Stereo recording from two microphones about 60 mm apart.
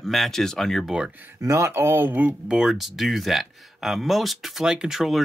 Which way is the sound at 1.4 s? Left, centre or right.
Right.